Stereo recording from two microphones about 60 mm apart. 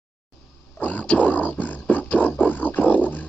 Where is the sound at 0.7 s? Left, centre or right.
Left.